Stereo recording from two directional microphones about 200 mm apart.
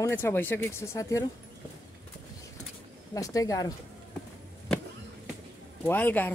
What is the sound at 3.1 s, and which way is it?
Speech, 15° left (ahead or behind).